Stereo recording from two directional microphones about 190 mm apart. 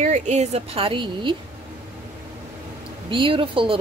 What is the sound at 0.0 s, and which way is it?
Speech, 40° right (ahead or behind).